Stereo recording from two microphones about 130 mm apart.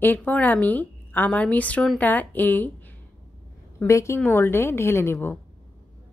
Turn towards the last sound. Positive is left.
turn(degrees=20)  # may be behind; listen again after turning